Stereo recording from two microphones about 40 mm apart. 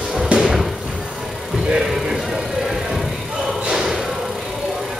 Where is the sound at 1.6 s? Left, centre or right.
Right.